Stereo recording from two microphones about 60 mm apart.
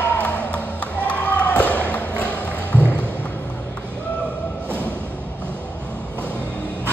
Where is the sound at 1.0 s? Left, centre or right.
Left.